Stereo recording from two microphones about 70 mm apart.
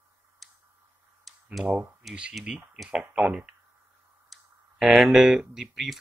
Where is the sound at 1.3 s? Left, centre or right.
Centre.